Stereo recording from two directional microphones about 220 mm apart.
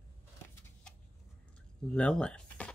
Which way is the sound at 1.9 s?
5° left (ahead or behind).